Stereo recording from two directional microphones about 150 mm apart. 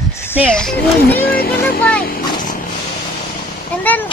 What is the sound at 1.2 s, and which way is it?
Speech, 90° left.